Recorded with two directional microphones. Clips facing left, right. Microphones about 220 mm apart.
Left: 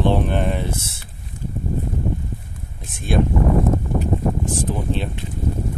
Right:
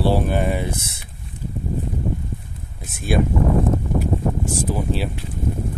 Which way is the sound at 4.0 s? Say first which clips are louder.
Even; 10° right (ahead or behind).